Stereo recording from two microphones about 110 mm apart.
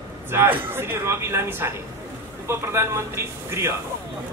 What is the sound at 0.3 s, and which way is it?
A man's voice, 20° right (ahead or behind).